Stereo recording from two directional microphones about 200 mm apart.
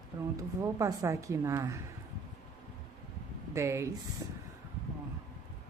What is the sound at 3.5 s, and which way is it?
Speech, 15° right (ahead or behind).